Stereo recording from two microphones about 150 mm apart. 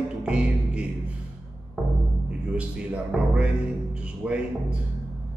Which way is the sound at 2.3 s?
5° right (ahead or behind).